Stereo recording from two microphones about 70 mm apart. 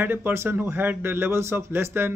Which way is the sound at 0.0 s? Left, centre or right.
Right.